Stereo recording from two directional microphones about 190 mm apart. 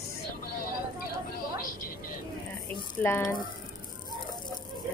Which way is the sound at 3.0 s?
10° left (ahead or behind).